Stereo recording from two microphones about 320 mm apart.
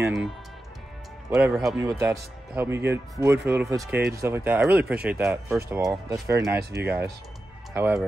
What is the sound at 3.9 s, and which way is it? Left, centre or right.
Speech, right.